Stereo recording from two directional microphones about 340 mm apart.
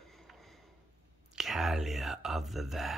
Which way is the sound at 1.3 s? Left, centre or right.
Centre.